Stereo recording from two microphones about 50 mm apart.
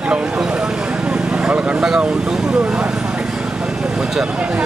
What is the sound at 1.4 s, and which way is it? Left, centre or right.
Vehicle, right.